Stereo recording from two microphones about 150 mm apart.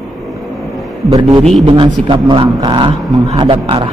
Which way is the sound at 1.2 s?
30° right (ahead or behind).